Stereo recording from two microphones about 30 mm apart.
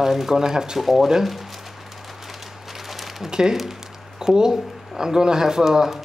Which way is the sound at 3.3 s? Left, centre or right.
Right.